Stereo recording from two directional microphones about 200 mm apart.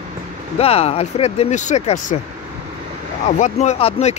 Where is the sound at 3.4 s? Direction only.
35° left (ahead or behind).